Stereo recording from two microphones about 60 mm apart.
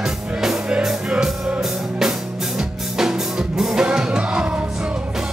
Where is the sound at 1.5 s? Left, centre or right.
Centre.